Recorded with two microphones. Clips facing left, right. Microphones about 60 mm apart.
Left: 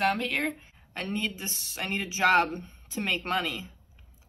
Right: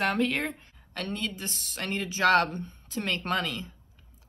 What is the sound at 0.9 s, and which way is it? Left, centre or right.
Speech, left.